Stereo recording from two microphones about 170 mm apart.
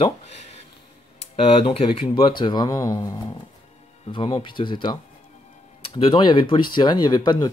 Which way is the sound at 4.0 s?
30° left (ahead or behind).